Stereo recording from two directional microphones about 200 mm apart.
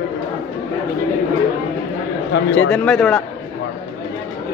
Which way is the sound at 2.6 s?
5° left (ahead or behind).